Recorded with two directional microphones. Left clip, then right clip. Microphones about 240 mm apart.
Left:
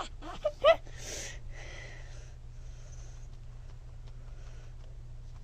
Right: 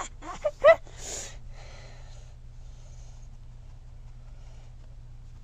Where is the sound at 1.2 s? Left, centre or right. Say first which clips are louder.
Even; centre.